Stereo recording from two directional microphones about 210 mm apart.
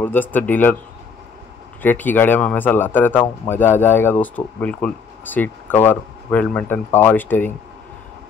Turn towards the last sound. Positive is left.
turn(degrees=10)  # may be behind; listen again after turning